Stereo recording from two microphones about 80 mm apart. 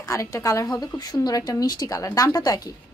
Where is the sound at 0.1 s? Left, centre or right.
Left.